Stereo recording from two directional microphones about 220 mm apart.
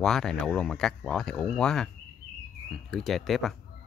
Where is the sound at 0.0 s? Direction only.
Centre (ahead or behind).